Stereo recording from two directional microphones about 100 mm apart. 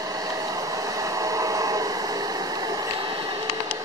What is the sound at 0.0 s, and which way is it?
Train, 35° right (ahead or behind).